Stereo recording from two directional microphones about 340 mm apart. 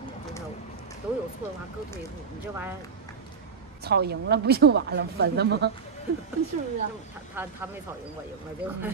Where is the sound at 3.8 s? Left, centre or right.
Right.